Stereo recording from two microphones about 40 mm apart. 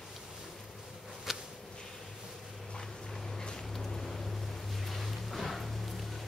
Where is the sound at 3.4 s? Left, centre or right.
Centre.